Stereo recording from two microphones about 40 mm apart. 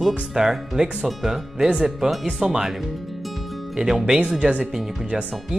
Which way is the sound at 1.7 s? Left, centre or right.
Centre.